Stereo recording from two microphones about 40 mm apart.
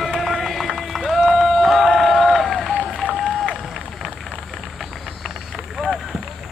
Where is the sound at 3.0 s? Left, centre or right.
Right.